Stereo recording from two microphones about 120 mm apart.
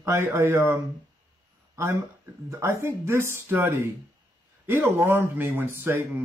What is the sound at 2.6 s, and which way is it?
Speech, 25° right (ahead or behind).